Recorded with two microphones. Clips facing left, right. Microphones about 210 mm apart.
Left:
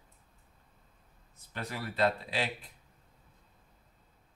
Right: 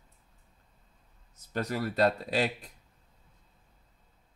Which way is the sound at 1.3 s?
45° right (ahead or behind).